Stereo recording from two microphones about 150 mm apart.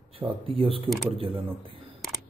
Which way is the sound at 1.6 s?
35° right (ahead or behind).